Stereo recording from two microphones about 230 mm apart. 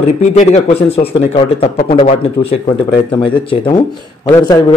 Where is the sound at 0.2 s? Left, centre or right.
Left.